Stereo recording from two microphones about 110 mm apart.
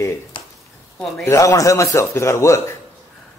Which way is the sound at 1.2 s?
30° left (ahead or behind).